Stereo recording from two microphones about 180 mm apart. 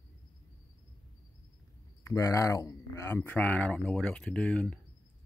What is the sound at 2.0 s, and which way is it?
Speech, 20° left (ahead or behind).